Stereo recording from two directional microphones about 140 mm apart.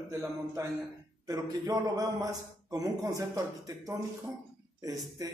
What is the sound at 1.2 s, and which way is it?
Speech, 25° right (ahead or behind).